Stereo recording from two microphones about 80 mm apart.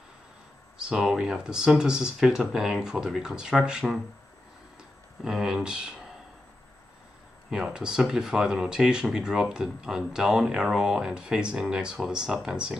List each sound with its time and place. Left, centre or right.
0.7 s speech: centre
5.2 s speech: centre
7.5 s speech: centre